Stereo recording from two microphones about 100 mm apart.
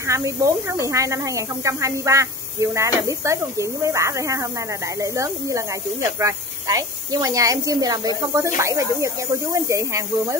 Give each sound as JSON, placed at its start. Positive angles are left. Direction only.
{"t": 0.0, "sound": "speech", "side_deg": -30}
{"t": 8.4, "sound": "speech", "side_deg": -30}